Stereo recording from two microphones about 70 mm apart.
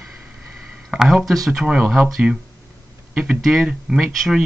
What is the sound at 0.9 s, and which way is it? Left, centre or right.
Speech, centre.